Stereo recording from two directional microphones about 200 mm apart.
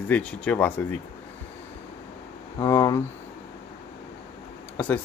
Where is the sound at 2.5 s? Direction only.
15° left (ahead or behind).